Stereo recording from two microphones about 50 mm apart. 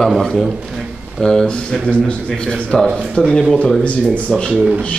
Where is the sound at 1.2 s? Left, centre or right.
Centre.